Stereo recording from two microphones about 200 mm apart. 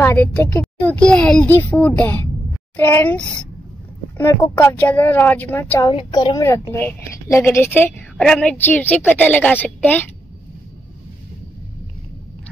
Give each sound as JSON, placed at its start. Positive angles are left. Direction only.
{"t": 0.0, "sound": "a woman's voice", "side_deg": 10}